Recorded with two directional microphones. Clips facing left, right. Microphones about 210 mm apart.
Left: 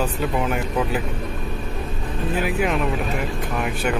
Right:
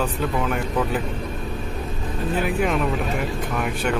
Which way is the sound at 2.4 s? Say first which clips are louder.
Even; 5° left (ahead or behind).